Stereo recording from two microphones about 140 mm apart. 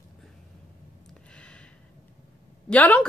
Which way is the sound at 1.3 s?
10° left (ahead or behind).